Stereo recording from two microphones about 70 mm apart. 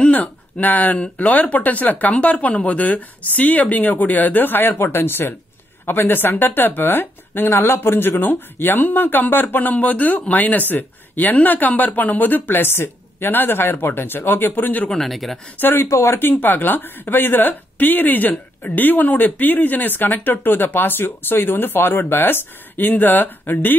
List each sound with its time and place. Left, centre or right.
0.0 s a sound: left
1.0 s speech: left
14.9 s speech: centre
15.5 s speech: left